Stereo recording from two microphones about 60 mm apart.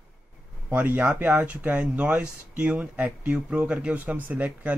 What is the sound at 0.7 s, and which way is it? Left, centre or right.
Speech, right.